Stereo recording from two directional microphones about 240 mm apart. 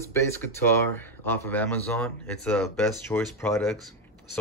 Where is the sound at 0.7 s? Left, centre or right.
Centre.